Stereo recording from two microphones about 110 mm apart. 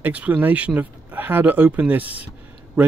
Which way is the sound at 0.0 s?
15° right (ahead or behind).